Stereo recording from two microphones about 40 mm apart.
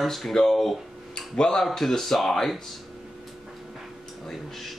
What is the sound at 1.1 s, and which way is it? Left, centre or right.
Tick-tock, left.